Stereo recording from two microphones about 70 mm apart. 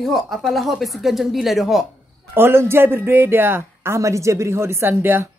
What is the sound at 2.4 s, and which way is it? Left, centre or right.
Speech, right.